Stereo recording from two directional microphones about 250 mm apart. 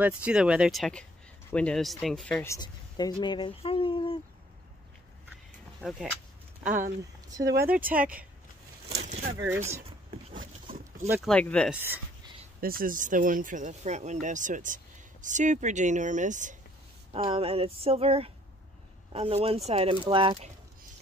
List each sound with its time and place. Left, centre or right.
0.0 s speech: centre; by 4.2 s left
5.8 s speech: centre
6.6 s speech: right
7.2 s speech: centre
8.8 s a sound: right
9.5 s speech: centre
9.8 s a sound: right
11.1 s speech: centre
12.5 s speech: right